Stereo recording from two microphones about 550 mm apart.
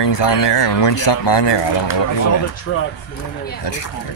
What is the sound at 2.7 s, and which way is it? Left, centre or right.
Speech, left.